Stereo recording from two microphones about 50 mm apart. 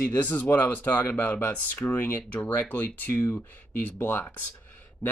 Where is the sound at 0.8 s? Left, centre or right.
Left.